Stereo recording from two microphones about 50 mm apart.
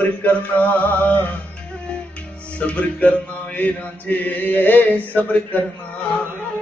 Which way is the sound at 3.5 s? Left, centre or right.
Left.